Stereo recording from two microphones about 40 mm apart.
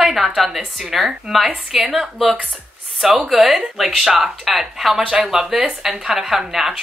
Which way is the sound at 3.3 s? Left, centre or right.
Centre.